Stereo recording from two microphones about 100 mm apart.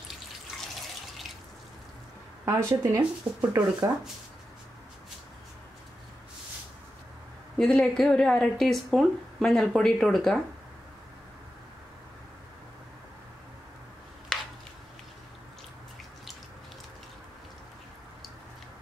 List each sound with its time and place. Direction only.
2.4 s speech: 25° right (ahead or behind)
3.0 s speech: 10° right (ahead or behind)
7.5 s speech: 10° left (ahead or behind)